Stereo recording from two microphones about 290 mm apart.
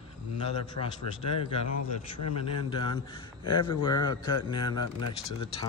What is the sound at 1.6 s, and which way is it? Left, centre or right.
A man's voice, left.